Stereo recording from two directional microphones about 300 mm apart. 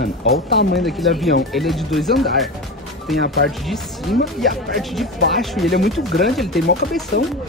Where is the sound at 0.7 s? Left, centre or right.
Centre.